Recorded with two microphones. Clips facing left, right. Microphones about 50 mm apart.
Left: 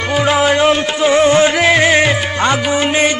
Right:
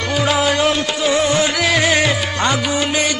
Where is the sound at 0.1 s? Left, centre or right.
Left.